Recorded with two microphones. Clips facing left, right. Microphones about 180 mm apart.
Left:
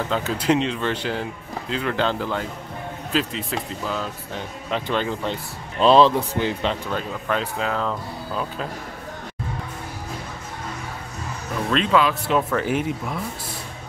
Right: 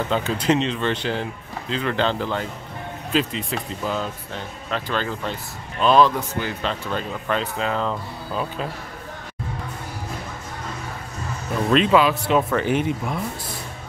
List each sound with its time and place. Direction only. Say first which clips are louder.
0.1 s speech: even; 5° left (ahead or behind)
4.6 s speech: left 2 dB; 15° left (ahead or behind)
5.8 s speech: left 2 dB; 30° left (ahead or behind)
6.9 s speech: even; 5° left (ahead or behind)
11.7 s speech: right 3 dB; 5° right (ahead or behind)